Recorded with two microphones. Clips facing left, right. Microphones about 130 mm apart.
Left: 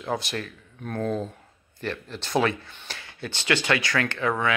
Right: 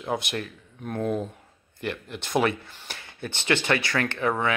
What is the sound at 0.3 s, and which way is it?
Speech, 20° right (ahead or behind).